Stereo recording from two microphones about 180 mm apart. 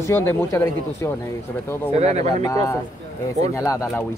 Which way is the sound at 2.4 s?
15° left (ahead or behind).